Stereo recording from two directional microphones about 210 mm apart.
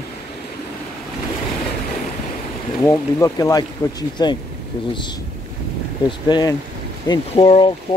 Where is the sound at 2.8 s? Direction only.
15° left (ahead or behind).